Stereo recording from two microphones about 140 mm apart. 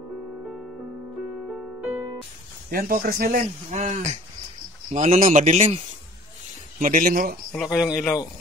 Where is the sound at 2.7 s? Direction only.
90° right; by 5.9 s 55° right (ahead or behind).